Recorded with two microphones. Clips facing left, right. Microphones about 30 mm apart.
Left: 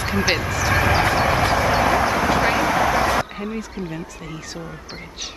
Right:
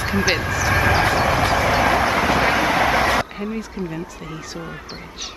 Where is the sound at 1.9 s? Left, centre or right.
Centre.